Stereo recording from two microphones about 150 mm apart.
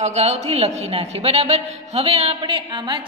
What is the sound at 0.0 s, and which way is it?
A man's voice, 45° right (ahead or behind).